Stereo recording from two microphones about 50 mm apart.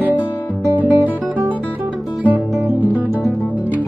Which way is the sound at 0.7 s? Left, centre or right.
Right.